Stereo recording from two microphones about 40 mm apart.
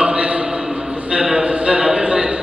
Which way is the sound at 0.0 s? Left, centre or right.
Right.